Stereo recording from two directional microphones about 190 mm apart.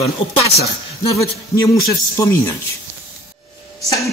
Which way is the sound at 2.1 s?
15° left (ahead or behind).